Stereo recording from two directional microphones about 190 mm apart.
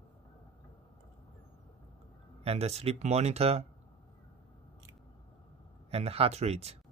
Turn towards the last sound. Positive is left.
turn(degrees=-35)  # may be behind; listen again after turning